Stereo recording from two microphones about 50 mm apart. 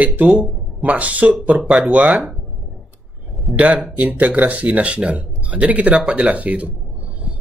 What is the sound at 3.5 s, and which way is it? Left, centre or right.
Speech, right.